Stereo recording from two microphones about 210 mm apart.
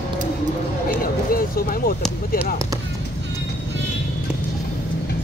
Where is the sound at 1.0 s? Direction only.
45° left (ahead or behind).